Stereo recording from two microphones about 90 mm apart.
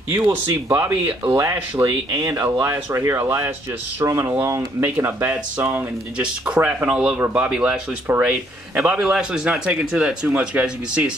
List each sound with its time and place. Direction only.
0.1 s speech: 30° right (ahead or behind)
6.1 s speech: 10° right (ahead or behind)
8.1 s speech: 25° right (ahead or behind)